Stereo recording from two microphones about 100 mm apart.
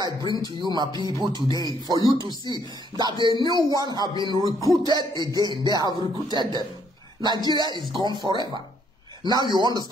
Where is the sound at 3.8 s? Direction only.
40° right (ahead or behind).